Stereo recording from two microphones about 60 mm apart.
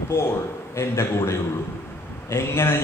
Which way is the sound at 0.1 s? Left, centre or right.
Left.